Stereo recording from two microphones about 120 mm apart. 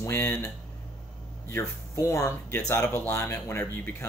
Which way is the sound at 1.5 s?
20° left (ahead or behind).